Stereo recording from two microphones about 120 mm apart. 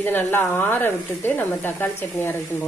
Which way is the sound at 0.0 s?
15° left (ahead or behind).